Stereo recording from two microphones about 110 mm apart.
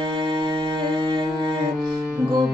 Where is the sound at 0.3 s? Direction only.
45° right (ahead or behind).